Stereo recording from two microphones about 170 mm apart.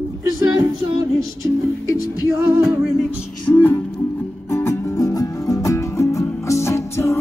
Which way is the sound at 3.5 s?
10° left (ahead or behind).